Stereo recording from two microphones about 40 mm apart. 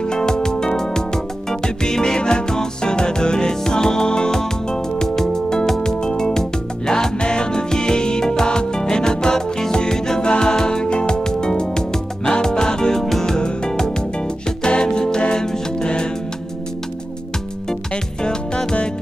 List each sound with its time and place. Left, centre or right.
0.0 s music: centre
18.2 s music: left